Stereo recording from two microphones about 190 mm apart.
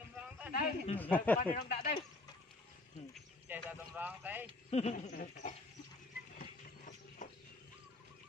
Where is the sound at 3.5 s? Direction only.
10° right (ahead or behind).